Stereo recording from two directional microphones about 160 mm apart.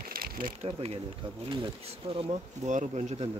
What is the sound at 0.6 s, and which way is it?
Bee, 40° right (ahead or behind).